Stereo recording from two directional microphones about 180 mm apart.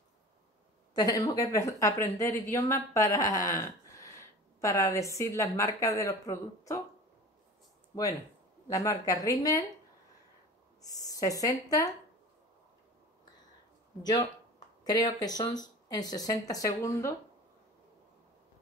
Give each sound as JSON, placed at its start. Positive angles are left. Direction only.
{"t": 0.9, "sound": "a woman's voice", "side_deg": 20}
{"t": 8.6, "sound": "a woman's voice", "side_deg": 20}
{"t": 10.8, "sound": "speech", "side_deg": 20}
{"t": 14.0, "sound": "a woman's voice", "side_deg": 25}